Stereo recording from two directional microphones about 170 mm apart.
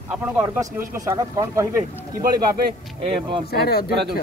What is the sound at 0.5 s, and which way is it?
Speech, 20° right (ahead or behind).